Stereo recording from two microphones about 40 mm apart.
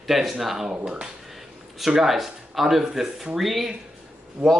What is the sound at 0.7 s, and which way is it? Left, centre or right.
Speech, right.